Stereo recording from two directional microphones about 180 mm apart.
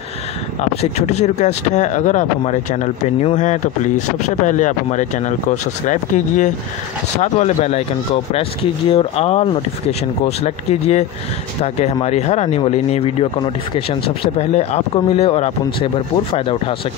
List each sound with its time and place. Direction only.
0.6 s speech: 40° left (ahead or behind)